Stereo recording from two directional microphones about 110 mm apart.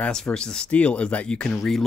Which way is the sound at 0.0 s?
5° left (ahead or behind).